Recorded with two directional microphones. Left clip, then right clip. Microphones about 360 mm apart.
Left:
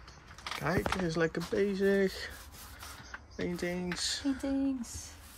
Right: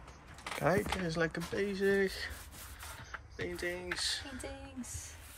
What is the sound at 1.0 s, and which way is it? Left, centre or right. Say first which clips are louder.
Speech: left 3 dB; centre.